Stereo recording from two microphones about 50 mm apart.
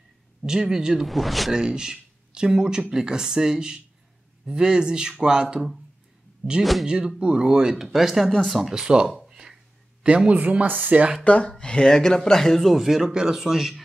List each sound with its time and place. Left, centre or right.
0.5 s speech: centre
1.0 s speech: centre
1.5 s speech: centre
6.6 s speech: centre
6.9 s speech: centre
8.3 s speech: centre
8.5 s speech: centre
9.3 s a sound: centre
10.0 s speech: right
11.2 s speech: left
11.5 s speech: centre
12.7 s speech: centre